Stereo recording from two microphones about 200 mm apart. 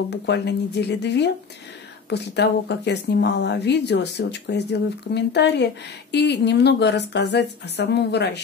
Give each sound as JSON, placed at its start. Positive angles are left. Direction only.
{"t": 0.1, "sound": "speech", "side_deg": 60}